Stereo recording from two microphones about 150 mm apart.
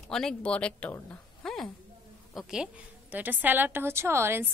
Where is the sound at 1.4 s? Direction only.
Centre (ahead or behind).